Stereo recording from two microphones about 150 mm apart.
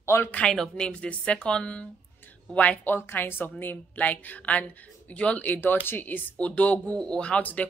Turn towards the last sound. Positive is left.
turn(degrees=10)  # may be behind; listen again after turning